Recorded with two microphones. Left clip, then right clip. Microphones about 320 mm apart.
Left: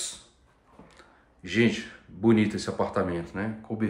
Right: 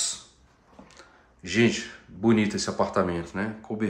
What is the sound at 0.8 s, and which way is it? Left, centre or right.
Speech, centre.